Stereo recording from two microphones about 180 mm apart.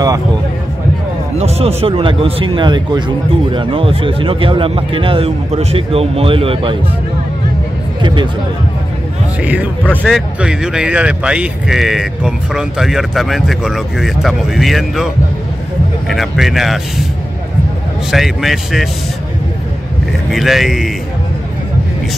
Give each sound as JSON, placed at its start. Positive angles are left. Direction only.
{"t": 1.4, "sound": "a man's voice", "side_deg": -35}
{"t": 8.0, "sound": "speech", "side_deg": -25}
{"t": 9.4, "sound": "speech", "side_deg": -10}
{"t": 9.8, "sound": "speech", "side_deg": 0}
{"t": 16.1, "sound": "speech", "side_deg": 0}
{"t": 18.1, "sound": "speech", "side_deg": 0}
{"t": 20.2, "sound": "speech", "side_deg": 0}